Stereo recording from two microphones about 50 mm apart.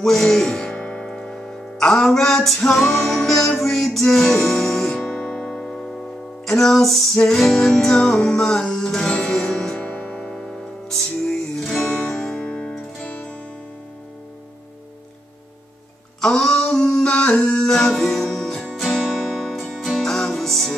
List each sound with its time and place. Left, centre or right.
0.0 s music: centre
5.0 s music: centre
10.3 s music: centre
12.4 s music: left
16.2 s a sound: centre
19.5 s music: centre